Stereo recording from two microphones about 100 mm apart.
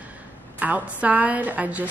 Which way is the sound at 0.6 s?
15° right (ahead or behind).